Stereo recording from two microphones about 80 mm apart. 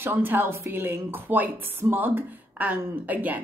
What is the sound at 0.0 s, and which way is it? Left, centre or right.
A woman's voice, right.